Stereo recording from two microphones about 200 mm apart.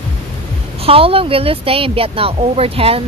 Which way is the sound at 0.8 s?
30° right (ahead or behind).